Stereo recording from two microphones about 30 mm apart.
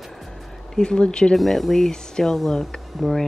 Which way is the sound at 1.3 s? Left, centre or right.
Centre.